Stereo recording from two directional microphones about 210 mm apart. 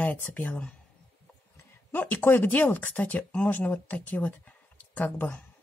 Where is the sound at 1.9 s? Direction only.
10° left (ahead or behind).